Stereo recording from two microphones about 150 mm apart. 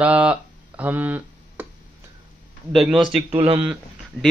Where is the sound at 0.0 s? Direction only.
10° right (ahead or behind).